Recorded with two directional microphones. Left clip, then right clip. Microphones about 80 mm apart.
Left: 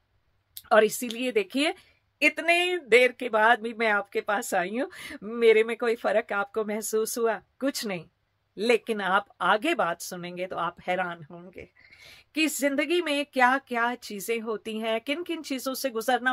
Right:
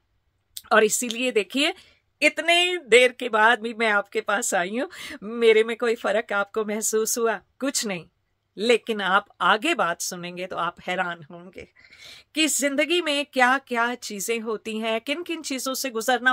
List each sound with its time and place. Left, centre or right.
0.6 s speech: right